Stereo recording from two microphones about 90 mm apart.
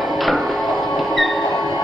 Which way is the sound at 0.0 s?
Centre (ahead or behind).